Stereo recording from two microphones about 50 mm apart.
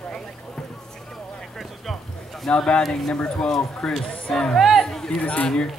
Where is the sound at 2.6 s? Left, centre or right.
Centre.